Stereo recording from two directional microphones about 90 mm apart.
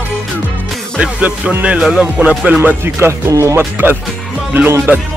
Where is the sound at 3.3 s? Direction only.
35° right (ahead or behind).